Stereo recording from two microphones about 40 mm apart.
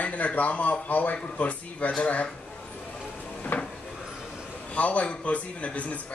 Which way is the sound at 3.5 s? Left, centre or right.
Left.